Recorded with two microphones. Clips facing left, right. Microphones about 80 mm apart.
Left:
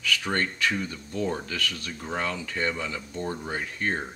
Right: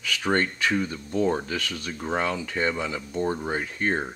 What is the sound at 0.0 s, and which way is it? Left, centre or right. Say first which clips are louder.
Speech: right 3 dB; right.